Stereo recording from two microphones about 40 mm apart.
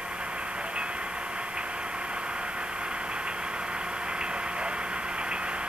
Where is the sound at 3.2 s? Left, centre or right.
Right.